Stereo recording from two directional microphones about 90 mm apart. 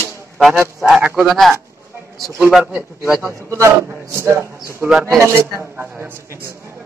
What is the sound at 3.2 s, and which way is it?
A man's voice, 30° right (ahead or behind).